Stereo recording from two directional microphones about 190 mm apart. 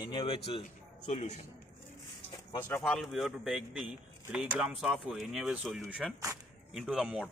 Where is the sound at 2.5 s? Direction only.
15° left (ahead or behind).